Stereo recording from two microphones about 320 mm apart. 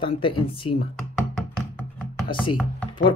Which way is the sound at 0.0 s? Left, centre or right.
Centre.